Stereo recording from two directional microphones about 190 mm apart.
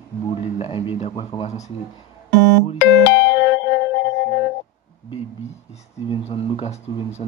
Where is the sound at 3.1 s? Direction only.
65° left (ahead or behind).